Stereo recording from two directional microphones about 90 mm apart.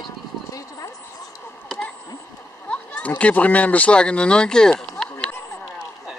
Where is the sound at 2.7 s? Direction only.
15° left (ahead or behind).